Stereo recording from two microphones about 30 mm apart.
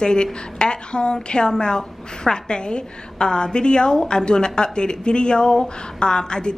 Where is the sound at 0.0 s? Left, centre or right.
Left.